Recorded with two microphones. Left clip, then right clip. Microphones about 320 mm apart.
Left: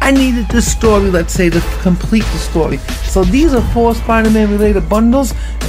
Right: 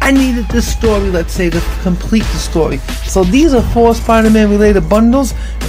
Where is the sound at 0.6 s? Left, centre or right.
Centre.